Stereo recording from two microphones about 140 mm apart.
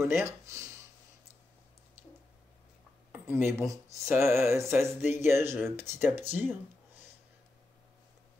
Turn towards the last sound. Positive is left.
turn(degrees=-15)  # may be behind; listen again after turning